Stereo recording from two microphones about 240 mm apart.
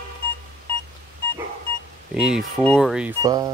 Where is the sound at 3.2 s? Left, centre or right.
Centre.